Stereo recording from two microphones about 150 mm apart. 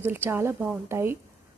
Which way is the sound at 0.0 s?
15° right (ahead or behind).